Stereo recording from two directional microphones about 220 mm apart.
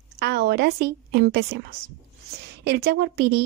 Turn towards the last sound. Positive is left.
turn(degrees=-45)  # may be behind; listen again after turning